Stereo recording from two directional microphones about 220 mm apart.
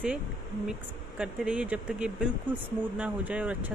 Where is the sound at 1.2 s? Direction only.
5° right (ahead or behind).